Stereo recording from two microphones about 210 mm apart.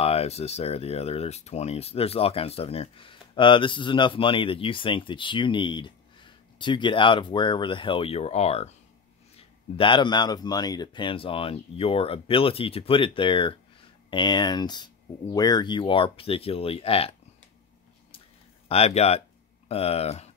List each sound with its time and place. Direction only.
0.0 s speech: 30° left (ahead or behind)
18.7 s speech: 30° left (ahead or behind)